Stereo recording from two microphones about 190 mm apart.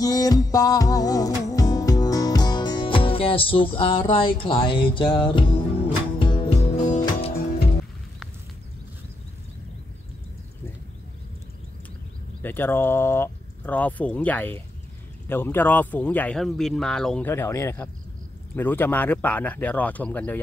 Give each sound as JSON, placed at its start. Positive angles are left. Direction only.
{"t": 0.0, "sound": "music", "side_deg": 20}
{"t": 12.4, "sound": "speech", "side_deg": 10}